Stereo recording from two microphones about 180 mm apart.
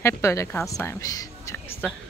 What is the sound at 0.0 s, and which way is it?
A woman's voice, 15° left (ahead or behind).